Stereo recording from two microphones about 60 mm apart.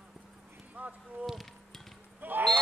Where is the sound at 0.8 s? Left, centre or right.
Right.